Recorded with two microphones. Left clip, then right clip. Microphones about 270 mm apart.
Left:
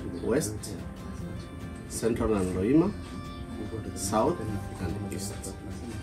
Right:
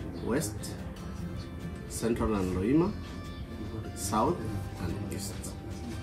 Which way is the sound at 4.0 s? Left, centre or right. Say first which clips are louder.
Left 2 dB; centre.